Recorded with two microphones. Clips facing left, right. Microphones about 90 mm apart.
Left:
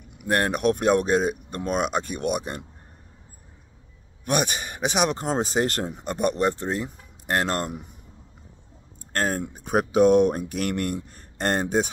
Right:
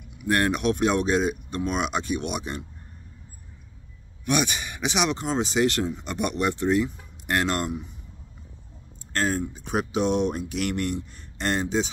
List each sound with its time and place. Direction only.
0.3 s speech: 40° left (ahead or behind)
4.3 s speech: 40° left (ahead or behind)
9.1 s speech: 50° left (ahead or behind)